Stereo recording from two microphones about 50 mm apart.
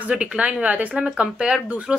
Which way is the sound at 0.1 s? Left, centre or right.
Right.